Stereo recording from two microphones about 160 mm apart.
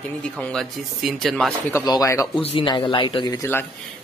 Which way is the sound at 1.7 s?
20° left (ahead or behind).